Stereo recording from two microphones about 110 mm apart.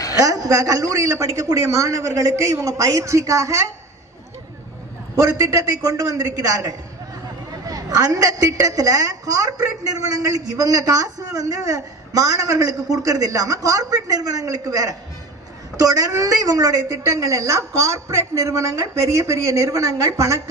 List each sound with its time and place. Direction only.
0.2 s a woman's voice: 30° right (ahead or behind)
5.1 s a man's voice: 30° right (ahead or behind)
16.2 s a woman's voice: 35° right (ahead or behind)